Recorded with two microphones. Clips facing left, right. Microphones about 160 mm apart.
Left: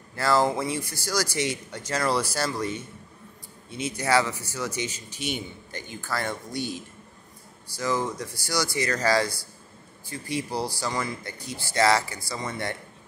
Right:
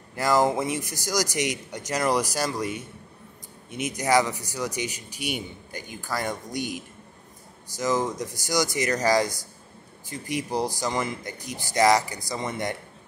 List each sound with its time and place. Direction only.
0.1 s speech: 15° right (ahead or behind)